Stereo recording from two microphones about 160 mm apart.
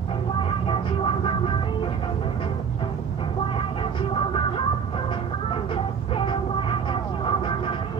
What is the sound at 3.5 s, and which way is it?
Music, 35° left (ahead or behind).